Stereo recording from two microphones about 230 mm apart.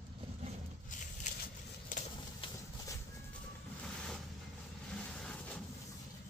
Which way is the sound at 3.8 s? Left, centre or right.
Centre.